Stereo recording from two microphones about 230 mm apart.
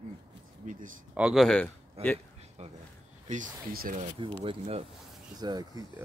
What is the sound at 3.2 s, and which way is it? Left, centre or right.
Speech, right.